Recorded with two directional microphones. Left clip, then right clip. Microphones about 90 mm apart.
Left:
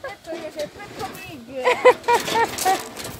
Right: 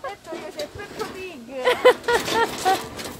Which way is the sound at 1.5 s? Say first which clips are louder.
Left 1 dB; 20° right (ahead or behind).